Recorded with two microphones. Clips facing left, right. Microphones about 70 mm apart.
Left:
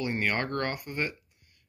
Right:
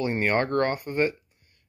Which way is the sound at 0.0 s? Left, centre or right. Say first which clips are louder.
Right 5 dB; right.